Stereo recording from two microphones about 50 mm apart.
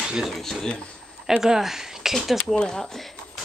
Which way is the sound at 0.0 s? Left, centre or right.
Centre.